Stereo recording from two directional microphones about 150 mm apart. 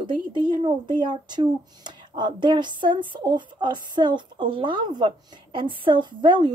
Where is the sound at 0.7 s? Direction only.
30° right (ahead or behind).